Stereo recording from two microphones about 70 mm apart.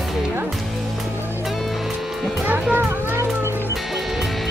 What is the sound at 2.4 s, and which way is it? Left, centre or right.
Music, right.